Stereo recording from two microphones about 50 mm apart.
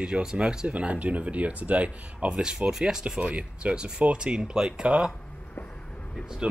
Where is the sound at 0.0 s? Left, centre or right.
Centre.